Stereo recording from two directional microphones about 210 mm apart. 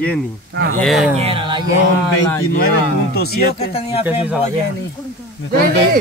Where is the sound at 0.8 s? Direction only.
Centre (ahead or behind).